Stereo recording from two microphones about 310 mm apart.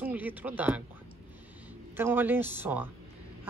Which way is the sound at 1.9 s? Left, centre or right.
Centre.